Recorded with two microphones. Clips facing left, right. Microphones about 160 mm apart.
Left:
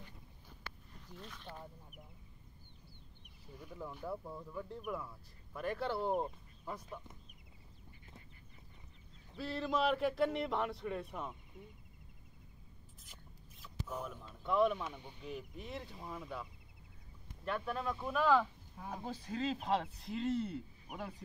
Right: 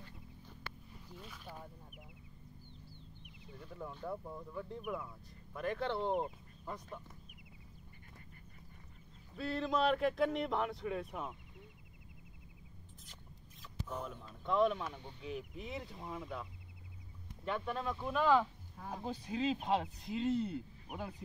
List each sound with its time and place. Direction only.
1.0 s speech: 5° right (ahead or behind)
3.5 s speech: 5° left (ahead or behind)
9.3 s speech: centre (ahead or behind)
13.0 s speech: 5° left (ahead or behind)
17.5 s speech: centre (ahead or behind)